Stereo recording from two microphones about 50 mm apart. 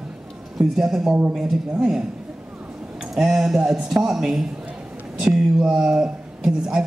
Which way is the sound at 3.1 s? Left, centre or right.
Centre.